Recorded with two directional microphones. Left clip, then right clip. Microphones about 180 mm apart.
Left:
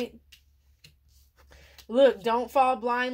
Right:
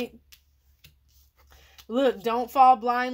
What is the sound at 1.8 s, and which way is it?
Speech, 40° right (ahead or behind).